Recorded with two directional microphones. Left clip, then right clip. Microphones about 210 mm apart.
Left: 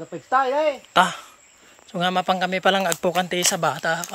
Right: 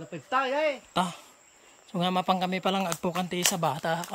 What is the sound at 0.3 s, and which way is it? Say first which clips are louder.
Speech: left 7 dB; 25° left (ahead or behind).